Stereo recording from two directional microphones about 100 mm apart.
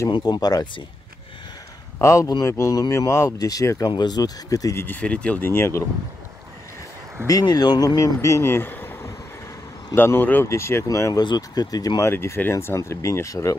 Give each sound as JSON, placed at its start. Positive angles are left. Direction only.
{"t": 0.2, "sound": "speech", "side_deg": 40}
{"t": 2.0, "sound": "speech", "side_deg": 30}
{"t": 3.9, "sound": "speech", "side_deg": 45}
{"t": 4.8, "sound": "speech", "side_deg": 15}
{"t": 7.2, "sound": "speech", "side_deg": 40}
{"t": 12.1, "sound": "speech", "side_deg": 25}